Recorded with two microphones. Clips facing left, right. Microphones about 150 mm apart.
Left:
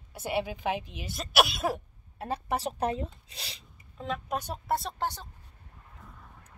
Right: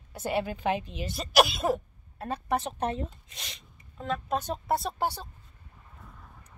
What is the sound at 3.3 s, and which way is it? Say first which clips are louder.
Speech: left 1 dB; 30° left (ahead or behind).